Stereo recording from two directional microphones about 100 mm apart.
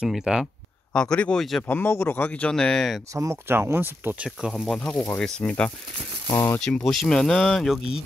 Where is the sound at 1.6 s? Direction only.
20° left (ahead or behind); by 3.0 s 5° left (ahead or behind).